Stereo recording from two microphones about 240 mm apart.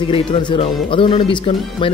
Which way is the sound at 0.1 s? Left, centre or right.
Left.